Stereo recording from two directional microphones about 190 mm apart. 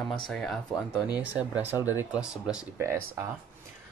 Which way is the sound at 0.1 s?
5° left (ahead or behind).